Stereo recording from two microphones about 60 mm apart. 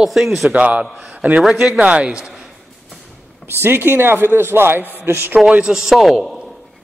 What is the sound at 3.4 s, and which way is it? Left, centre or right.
A man's voice, right.